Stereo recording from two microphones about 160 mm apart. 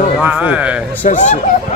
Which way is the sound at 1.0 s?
50° left (ahead or behind).